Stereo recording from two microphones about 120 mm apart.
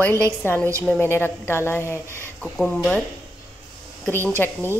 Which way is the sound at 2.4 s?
10° left (ahead or behind).